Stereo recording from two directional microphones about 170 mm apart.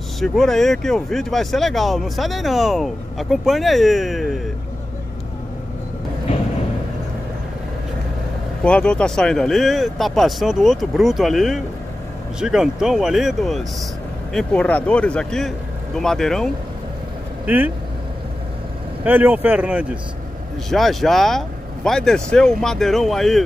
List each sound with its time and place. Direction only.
0.2 s speech: centre (ahead or behind)
8.6 s speech: 5° left (ahead or behind)
17.5 s speech: 10° right (ahead or behind)
19.0 s speech: 10° right (ahead or behind)